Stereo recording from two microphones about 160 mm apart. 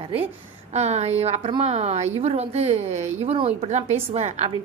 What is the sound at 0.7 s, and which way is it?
A woman's voice, 40° right (ahead or behind).